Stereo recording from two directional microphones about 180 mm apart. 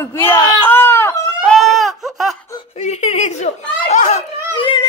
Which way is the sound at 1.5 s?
Centre (ahead or behind).